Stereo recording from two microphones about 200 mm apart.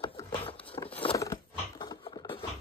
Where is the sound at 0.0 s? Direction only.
25° left (ahead or behind).